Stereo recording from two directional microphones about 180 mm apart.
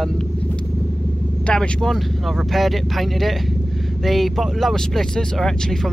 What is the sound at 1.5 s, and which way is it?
Speech, 5° left (ahead or behind).